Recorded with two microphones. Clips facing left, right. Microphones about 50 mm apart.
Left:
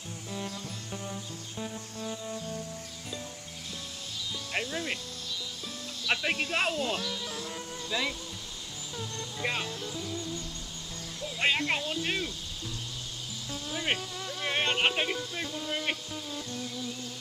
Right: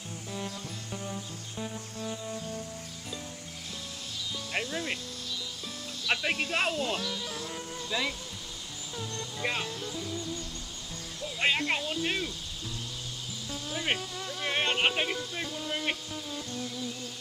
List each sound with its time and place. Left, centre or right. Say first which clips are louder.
4.5 s music: even; centre
6.0 s speech: even; centre
8.9 s music: right 1 dB; centre
11.3 s speech: even; centre
13.7 s speech: even; centre